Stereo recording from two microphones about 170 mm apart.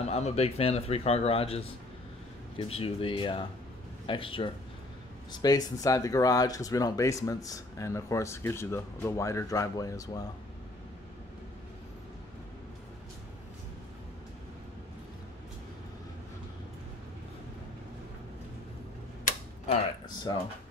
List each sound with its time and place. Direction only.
0.1 s a man's voice: 40° left (ahead or behind); by 10.2 s 20° left (ahead or behind)
20.3 s speech: 25° left (ahead or behind)